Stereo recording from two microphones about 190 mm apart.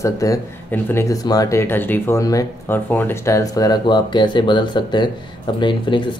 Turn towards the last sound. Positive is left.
turn(degrees=25)  # may be behind; listen again after turning